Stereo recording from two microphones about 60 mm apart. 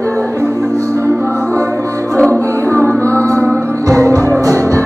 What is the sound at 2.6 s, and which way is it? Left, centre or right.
Music, left.